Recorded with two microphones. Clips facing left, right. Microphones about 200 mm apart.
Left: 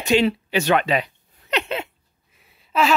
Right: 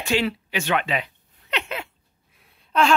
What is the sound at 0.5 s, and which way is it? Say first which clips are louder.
Speech: left 5 dB; 40° left (ahead or behind).